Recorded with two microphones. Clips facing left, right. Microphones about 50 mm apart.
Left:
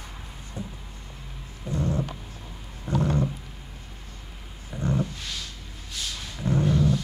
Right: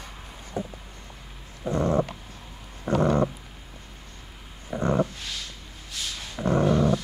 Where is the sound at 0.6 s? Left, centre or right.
Right.